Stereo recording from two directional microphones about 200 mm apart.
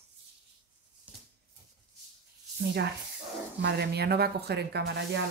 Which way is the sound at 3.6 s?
55° right (ahead or behind).